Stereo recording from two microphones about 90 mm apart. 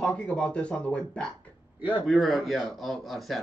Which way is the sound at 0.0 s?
15° left (ahead or behind).